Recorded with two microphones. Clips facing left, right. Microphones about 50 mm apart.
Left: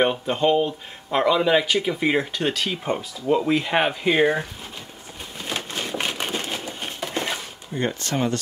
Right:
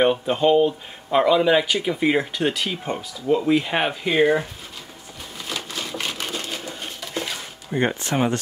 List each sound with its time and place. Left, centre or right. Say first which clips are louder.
0.1 s speech: right 2 dB; centre
2.7 s speech: left 2 dB; centre
3.4 s speech: even; centre
4.0 s speech: right 2 dB; centre
5.5 s a sound: left 2 dB; left
6.0 s crushing: left 2 dB; left
7.7 s speech: right 3 dB; right